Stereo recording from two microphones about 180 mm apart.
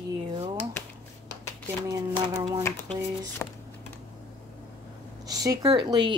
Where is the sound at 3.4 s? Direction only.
5° left (ahead or behind).